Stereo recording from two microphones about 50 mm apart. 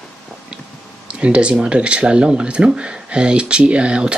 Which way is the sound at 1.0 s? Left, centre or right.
Right.